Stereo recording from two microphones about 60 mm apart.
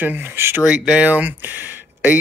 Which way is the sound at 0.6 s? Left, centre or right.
Right.